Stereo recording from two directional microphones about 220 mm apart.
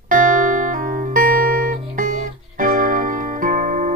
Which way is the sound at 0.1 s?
35° right (ahead or behind).